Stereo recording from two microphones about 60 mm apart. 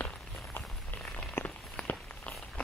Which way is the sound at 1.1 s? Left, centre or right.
Left.